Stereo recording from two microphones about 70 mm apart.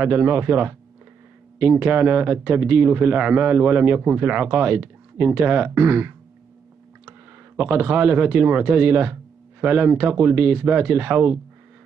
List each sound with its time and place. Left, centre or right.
0.0 s a man's voice: right